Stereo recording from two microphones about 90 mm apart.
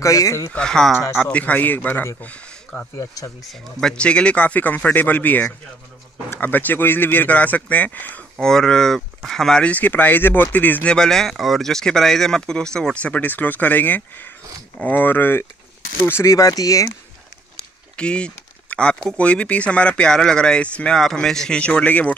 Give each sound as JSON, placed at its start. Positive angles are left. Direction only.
{"t": 0.0, "sound": "speech", "side_deg": 35}
{"t": 0.5, "sound": "speech", "side_deg": 10}
{"t": 1.3, "sound": "speech", "side_deg": 15}
{"t": 8.4, "sound": "speech", "side_deg": 5}
{"t": 16.1, "sound": "speech", "side_deg": 35}
{"t": 17.6, "sound": "speech", "side_deg": 10}